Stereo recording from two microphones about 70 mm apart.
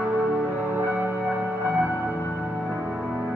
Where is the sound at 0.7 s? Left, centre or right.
Right.